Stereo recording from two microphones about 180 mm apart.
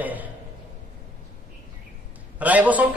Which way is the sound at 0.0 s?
10° right (ahead or behind).